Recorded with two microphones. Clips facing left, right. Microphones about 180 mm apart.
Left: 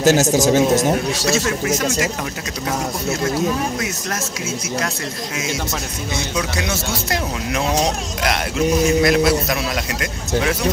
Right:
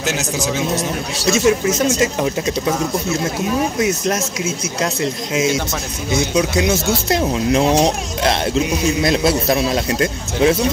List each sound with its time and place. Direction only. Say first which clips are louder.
0.0 s speech: left 7 dB; 40° left (ahead or behind)
1.3 s speech: right 7 dB; 20° right (ahead or behind)
6.3 s speech: right 7 dB; 20° right (ahead or behind)